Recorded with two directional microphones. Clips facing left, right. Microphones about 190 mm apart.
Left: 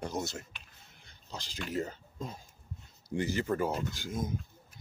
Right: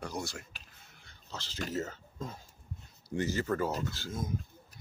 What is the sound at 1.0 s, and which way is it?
Pig, 15° left (ahead or behind).